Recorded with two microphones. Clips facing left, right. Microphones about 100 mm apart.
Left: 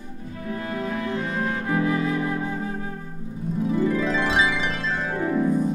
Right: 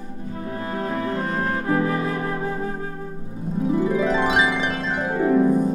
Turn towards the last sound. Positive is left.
turn(degrees=-20)  # may be behind; listen again after turning